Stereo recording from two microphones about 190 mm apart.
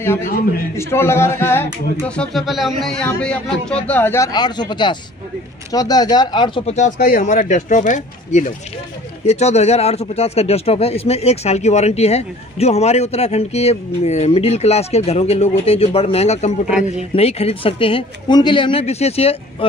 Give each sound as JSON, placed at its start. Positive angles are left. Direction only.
{"t": 0.7, "sound": "speech", "side_deg": 15}
{"t": 16.6, "sound": "speech", "side_deg": -5}
{"t": 17.1, "sound": "speech", "side_deg": 30}